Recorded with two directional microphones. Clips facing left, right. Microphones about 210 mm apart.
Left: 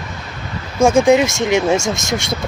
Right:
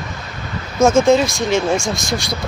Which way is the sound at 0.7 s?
15° left (ahead or behind).